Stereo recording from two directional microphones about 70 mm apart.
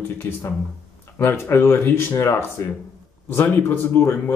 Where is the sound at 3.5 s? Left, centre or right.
Left.